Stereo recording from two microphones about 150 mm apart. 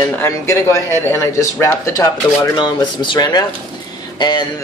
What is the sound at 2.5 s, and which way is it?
Speech, 30° left (ahead or behind).